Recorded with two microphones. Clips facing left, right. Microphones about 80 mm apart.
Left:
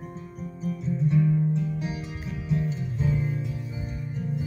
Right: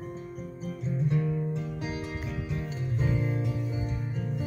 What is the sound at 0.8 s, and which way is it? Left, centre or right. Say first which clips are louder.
Music: left 5 dB; right.